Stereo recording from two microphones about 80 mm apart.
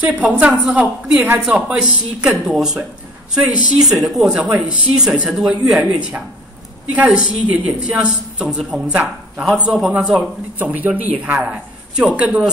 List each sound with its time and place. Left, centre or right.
0.0 s a woman's voice: centre
10.6 s a woman's voice: right